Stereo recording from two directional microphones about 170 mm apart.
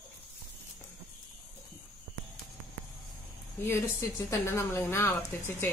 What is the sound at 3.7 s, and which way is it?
A woman's voice, 15° left (ahead or behind).